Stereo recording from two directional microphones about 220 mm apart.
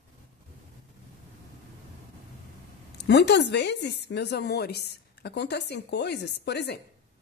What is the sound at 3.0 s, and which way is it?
A woman's voice, 50° left (ahead or behind).